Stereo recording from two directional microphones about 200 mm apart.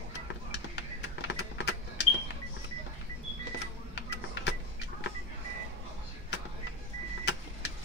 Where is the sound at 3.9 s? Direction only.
60° left (ahead or behind).